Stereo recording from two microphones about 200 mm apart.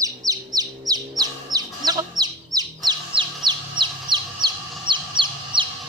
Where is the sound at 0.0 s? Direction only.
20° right (ahead or behind).